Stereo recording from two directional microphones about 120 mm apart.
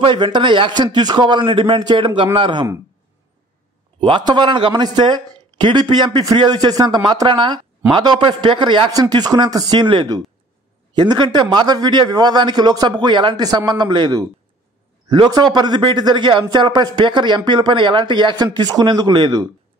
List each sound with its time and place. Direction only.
0.0 s a man's voice: 40° right (ahead or behind)
4.0 s a man's voice: 40° right (ahead or behind)